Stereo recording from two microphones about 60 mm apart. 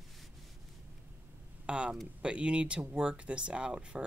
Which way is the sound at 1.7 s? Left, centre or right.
Centre.